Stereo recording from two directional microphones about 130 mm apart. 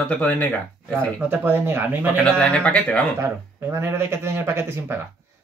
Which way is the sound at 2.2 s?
5° left (ahead or behind).